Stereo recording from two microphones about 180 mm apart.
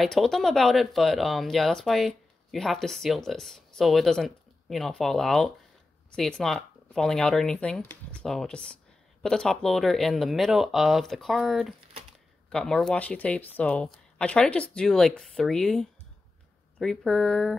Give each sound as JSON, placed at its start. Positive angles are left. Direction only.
{"t": 0.0, "sound": "speech", "side_deg": 0}